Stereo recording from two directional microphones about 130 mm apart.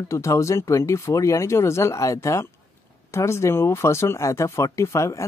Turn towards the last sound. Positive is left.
turn(degrees=25)  # may be behind; listen again after turning